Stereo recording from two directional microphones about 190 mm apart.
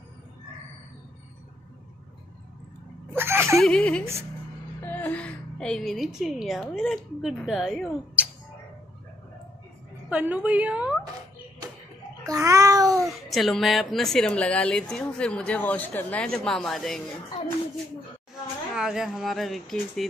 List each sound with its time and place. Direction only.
3.2 s whimper: 15° right (ahead or behind)
3.5 s a woman's voice: 5° left (ahead or behind)
10.0 s a woman's voice: 10° right (ahead or behind)
12.3 s babbling: 15° right (ahead or behind)
13.0 s a woman's voice: centre (ahead or behind)
18.8 s a woman's voice: centre (ahead or behind)